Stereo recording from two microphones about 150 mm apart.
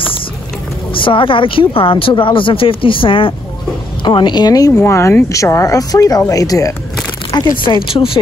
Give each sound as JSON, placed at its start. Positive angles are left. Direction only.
{"t": 0.9, "sound": "speech", "side_deg": 35}